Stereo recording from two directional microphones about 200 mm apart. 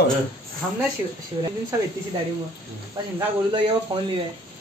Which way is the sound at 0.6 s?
Centre (ahead or behind).